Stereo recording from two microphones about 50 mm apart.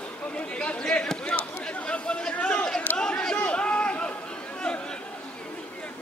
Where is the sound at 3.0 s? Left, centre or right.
Centre.